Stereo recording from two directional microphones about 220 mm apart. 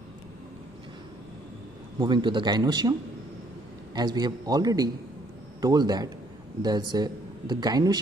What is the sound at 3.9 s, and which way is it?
A man's voice, 20° right (ahead or behind).